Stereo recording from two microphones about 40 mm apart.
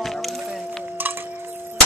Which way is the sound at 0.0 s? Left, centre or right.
Centre.